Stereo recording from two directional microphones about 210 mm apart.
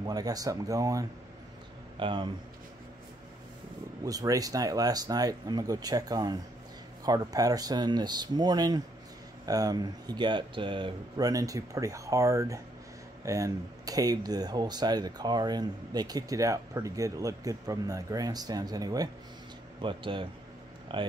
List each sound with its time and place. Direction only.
0.0 s speech: 20° right (ahead or behind)
4.0 s speech: 15° right (ahead or behind)